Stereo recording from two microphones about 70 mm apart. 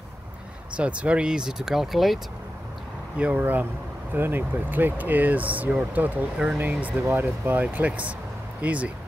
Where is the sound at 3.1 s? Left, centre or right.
Right.